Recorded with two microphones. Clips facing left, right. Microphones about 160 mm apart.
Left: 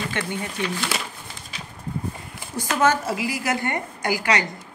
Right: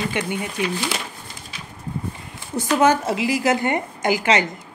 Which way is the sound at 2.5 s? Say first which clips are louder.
Right 4 dB; 20° right (ahead or behind).